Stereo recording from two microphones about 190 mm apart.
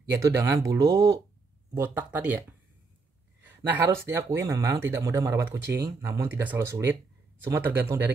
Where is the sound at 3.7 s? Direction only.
10° right (ahead or behind).